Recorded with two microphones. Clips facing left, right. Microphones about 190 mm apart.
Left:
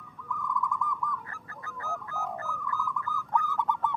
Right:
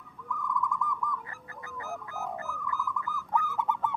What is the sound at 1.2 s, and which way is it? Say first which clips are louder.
Bird: even; 15° right (ahead or behind).